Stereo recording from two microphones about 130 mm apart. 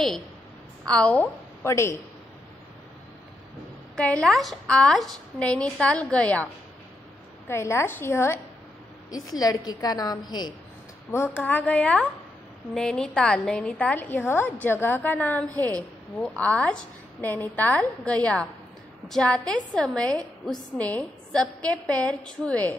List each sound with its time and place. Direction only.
0.8 s a woman's voice: 10° left (ahead or behind)
3.9 s a woman's voice: 5° left (ahead or behind)
7.4 s a woman's voice: 20° left (ahead or behind)
11.1 s a woman's voice: 15° left (ahead or behind)